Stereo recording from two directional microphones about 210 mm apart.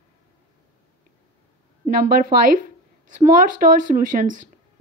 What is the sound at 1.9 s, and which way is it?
Speech, 40° right (ahead or behind).